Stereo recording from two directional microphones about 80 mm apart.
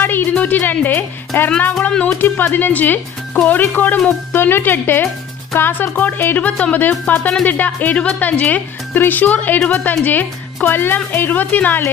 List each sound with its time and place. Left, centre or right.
0.0 s music: left
0.3 s a woman's voice: left
1.9 s speech: centre
2.1 s a woman's voice: left